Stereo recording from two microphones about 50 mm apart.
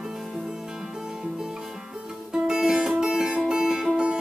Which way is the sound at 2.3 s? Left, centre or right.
Centre.